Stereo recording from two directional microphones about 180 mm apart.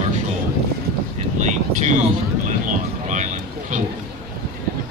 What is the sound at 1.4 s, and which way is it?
Vehicle, 40° right (ahead or behind).